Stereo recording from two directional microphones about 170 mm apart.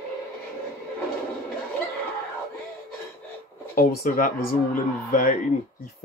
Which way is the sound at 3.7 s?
55° left (ahead or behind).